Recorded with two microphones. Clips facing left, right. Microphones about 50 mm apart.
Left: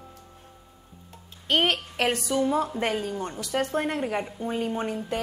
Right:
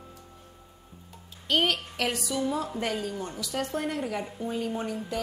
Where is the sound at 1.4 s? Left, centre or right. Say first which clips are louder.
Left 2 dB; left.